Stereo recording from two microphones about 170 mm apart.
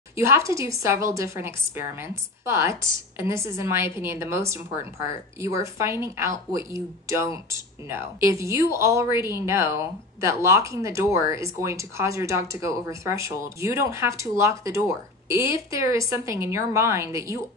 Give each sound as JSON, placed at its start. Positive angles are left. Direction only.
{"t": 0.1, "sound": "speech", "side_deg": -15}